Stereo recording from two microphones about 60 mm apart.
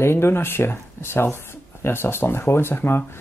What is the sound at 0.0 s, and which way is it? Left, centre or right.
Speech, left.